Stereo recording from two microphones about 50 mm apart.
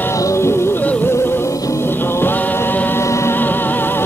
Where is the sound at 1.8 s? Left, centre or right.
Left.